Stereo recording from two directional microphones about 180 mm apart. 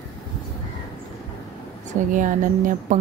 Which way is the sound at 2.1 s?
45° right (ahead or behind).